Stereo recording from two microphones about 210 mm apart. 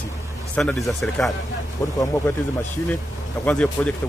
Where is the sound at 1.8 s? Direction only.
15° left (ahead or behind).